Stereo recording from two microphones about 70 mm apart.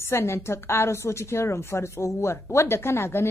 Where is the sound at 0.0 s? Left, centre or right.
Left.